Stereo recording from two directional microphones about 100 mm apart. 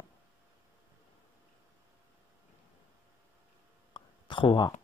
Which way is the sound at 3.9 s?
55° left (ahead or behind).